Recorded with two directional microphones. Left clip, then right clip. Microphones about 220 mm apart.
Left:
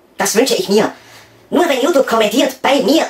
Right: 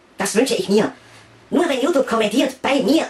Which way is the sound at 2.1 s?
30° left (ahead or behind).